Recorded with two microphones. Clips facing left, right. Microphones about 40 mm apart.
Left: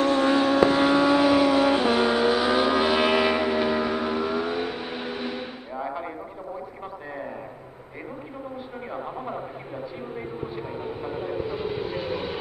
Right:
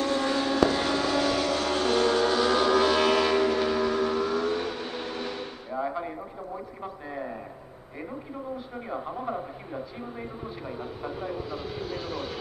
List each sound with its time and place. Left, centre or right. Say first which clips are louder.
0.0 s vehicle: left 6 dB; left
8.9 s speech: right 1 dB; centre
10.1 s vehicle: left 5 dB; centre